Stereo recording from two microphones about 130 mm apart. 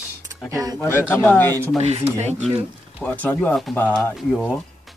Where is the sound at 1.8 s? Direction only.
60° right (ahead or behind).